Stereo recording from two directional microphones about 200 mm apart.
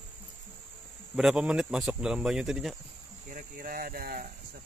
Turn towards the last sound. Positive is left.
turn(degrees=-50)  # may be behind; listen again after turning